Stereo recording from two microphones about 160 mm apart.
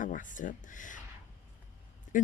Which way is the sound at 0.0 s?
55° left (ahead or behind).